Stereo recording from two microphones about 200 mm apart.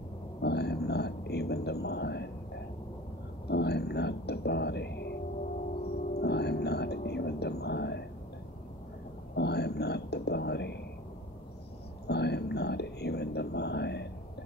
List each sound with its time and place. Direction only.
0.4 s a sound: 55° left (ahead or behind)
6.1 s whispering: 55° left (ahead or behind)
9.3 s whispering: 55° left (ahead or behind)
12.1 s whispering: 55° left (ahead or behind)